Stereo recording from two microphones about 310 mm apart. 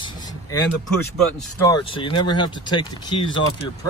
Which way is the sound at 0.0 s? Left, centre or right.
Centre.